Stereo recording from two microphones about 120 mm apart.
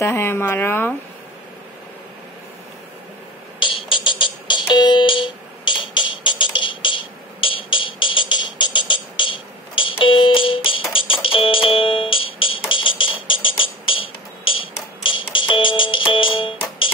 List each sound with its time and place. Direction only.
0.0 s speech: 20° left (ahead or behind)
3.5 s music: 45° left (ahead or behind)